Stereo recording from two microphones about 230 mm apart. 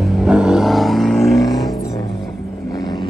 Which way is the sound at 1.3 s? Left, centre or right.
Centre.